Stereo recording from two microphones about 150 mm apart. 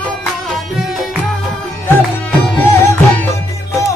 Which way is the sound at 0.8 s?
Centre (ahead or behind).